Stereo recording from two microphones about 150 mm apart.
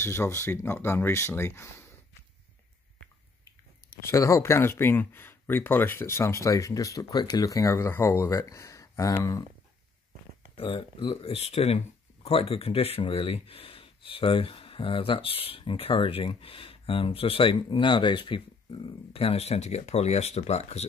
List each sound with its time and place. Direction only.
0.0 s speech: 20° left (ahead or behind)
4.0 s speech: 20° left (ahead or behind)
10.5 s speech: 35° left (ahead or behind)